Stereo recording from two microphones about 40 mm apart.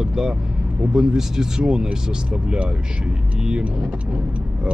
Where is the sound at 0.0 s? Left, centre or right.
Centre.